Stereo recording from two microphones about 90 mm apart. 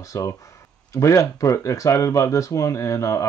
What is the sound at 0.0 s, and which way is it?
Speech, 35° left (ahead or behind).